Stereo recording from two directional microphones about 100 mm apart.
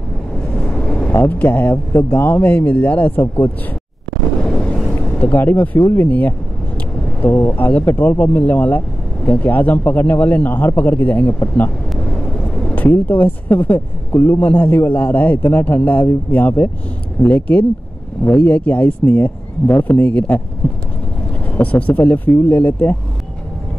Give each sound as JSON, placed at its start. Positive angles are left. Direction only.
{"t": 0.6, "sound": "vehicle", "side_deg": 10}
{"t": 1.1, "sound": "speech", "side_deg": 20}
{"t": 4.5, "sound": "vehicle", "side_deg": 10}
{"t": 5.9, "sound": "speech", "side_deg": 15}
{"t": 21.5, "sound": "speech", "side_deg": 15}